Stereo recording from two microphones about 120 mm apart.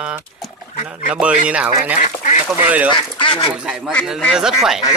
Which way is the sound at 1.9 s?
80° left.